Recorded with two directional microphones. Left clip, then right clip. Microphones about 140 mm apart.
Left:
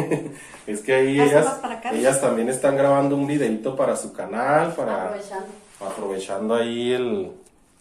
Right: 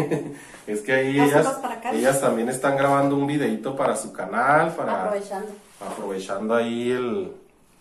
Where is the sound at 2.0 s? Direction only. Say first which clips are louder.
Left 1 dB; 45° left (ahead or behind).